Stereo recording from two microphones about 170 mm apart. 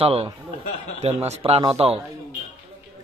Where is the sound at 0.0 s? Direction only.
35° right (ahead or behind).